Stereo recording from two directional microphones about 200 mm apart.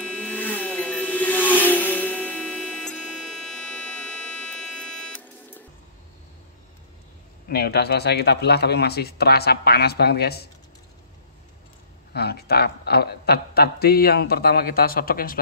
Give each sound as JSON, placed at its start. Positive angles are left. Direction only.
{"t": 0.0, "sound": "music", "side_deg": 5}
{"t": 3.5, "sound": "buzzer", "side_deg": 5}
{"t": 7.4, "sound": "a man's voice", "side_deg": 55}
{"t": 12.1, "sound": "a man's voice", "side_deg": 55}